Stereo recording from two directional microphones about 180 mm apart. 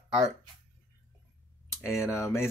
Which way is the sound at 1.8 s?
15° left (ahead or behind).